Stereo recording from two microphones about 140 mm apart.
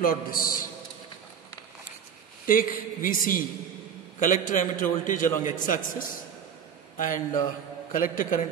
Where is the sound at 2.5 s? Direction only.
80° left.